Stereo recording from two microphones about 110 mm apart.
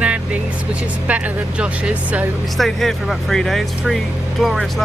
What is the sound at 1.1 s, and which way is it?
Speech, 10° right (ahead or behind).